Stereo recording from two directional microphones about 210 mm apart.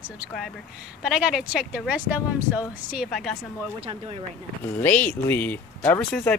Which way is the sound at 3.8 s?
25° right (ahead or behind).